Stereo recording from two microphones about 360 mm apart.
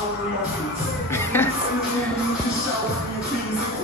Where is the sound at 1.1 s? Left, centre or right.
Centre.